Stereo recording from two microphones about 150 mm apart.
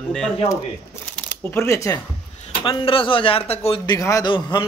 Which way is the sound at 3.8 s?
20° left (ahead or behind).